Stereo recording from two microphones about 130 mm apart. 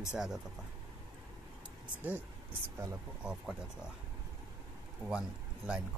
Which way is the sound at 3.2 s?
5° right (ahead or behind).